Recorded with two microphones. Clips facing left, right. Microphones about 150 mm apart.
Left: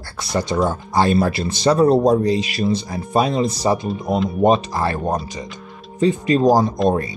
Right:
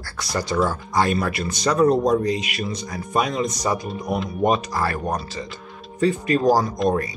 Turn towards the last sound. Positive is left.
turn(degrees=30)  # may be behind; listen again after turning